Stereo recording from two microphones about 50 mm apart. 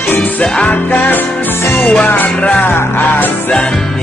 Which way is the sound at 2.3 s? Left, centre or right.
Left.